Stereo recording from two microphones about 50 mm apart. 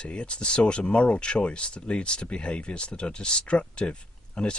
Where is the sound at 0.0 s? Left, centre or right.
Left.